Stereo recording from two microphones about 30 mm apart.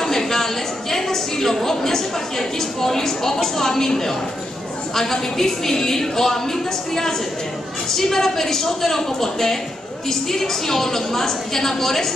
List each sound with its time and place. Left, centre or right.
0.0 s a woman's voice: centre